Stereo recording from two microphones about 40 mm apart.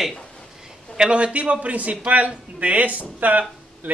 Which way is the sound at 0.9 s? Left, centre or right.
Right.